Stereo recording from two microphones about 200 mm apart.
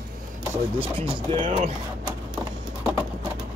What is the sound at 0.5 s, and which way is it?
Chopping, 10° right (ahead or behind).